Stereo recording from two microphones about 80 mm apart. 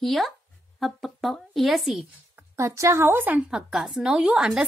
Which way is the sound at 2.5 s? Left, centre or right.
Right.